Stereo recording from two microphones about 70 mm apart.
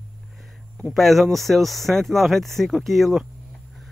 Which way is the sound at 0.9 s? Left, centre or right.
Centre.